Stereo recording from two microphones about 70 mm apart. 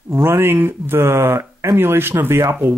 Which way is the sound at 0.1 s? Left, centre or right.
Right.